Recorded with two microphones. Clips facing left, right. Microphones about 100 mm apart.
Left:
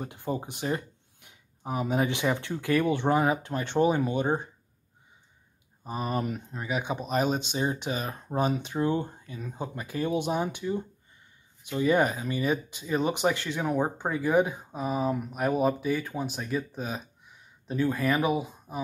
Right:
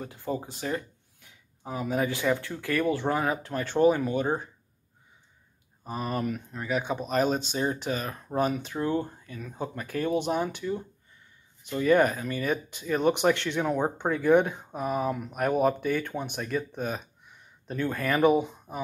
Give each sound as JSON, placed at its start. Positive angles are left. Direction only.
{"t": 0.0, "sound": "speech", "side_deg": 20}
{"t": 6.1, "sound": "speech", "side_deg": 20}
{"t": 6.9, "sound": "speech", "side_deg": 5}
{"t": 7.5, "sound": "speech", "side_deg": 20}
{"t": 11.7, "sound": "speech", "side_deg": 15}